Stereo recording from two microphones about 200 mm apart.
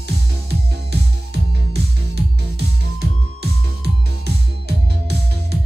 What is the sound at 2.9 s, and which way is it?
Music, 55° right (ahead or behind).